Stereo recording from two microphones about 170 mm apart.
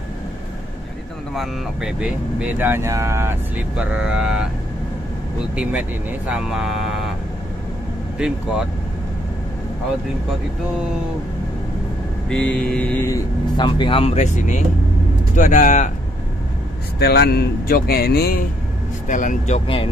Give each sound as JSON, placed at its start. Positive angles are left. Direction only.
{"t": 1.3, "sound": "speech", "side_deg": 0}
{"t": 5.6, "sound": "speech", "side_deg": -5}
{"t": 12.3, "sound": "mantra", "side_deg": 5}
{"t": 13.6, "sound": "speech", "side_deg": 30}
{"t": 17.0, "sound": "speech", "side_deg": 65}
{"t": 19.0, "sound": "speech", "side_deg": 50}